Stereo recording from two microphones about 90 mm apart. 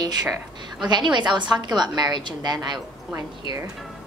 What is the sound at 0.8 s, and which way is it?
A woman's voice, 55° right (ahead or behind).